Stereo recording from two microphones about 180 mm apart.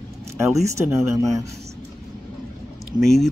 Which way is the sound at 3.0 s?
Centre (ahead or behind).